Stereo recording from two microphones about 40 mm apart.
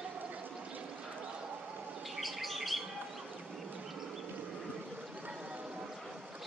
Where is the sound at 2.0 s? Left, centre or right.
Centre.